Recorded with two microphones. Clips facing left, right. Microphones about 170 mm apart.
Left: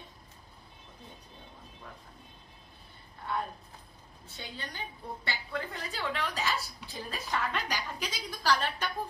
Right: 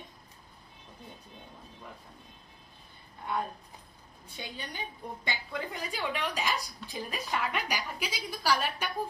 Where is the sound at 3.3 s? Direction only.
15° right (ahead or behind).